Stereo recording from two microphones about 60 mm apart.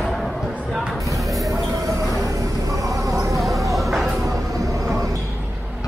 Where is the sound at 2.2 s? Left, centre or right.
Right.